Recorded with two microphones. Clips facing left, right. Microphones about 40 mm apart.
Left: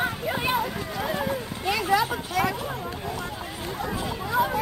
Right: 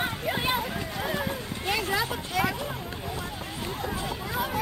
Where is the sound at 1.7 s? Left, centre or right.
Left.